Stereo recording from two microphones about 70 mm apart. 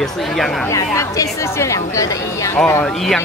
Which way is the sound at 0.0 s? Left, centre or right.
Centre.